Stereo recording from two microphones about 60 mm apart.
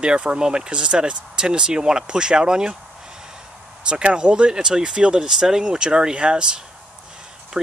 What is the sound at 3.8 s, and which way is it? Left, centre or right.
Speech, centre.